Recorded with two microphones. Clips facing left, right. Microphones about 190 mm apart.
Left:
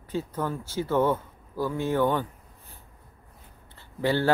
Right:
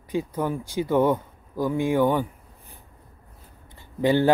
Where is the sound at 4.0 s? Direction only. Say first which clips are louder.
Right 5 dB; 15° right (ahead or behind).